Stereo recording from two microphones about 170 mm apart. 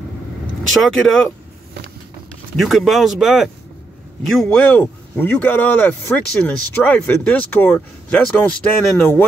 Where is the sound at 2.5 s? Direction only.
Centre (ahead or behind).